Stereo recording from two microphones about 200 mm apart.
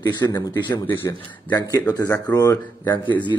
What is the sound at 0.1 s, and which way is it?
A man's voice, 20° left (ahead or behind).